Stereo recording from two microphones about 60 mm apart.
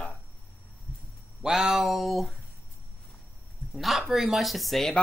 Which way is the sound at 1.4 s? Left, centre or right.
Centre.